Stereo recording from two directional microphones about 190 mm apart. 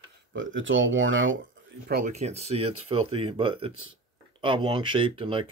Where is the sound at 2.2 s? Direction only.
35° right (ahead or behind).